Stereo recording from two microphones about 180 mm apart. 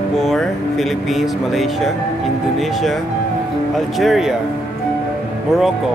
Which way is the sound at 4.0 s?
Centre (ahead or behind).